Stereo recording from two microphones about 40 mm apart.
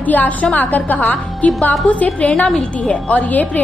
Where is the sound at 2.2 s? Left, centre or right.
Left.